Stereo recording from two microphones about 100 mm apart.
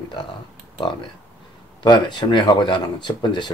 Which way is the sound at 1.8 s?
45° left (ahead or behind).